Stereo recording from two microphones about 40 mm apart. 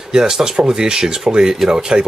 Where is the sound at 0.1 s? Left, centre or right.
Centre.